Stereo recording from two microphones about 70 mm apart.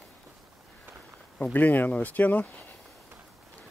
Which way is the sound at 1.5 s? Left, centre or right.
Left.